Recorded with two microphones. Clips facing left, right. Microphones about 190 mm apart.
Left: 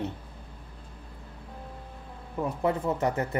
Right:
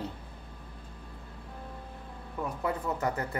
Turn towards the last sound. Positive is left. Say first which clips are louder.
# left 4 dB
turn(degrees=25)  # may be behind; listen again after turning